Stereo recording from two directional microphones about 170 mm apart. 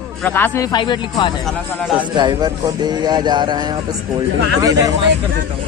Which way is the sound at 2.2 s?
25° right (ahead or behind).